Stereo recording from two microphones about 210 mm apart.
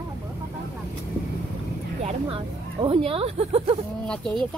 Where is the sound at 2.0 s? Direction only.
25° right (ahead or behind).